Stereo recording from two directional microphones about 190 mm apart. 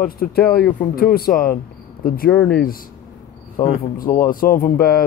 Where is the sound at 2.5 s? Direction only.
50° left (ahead or behind).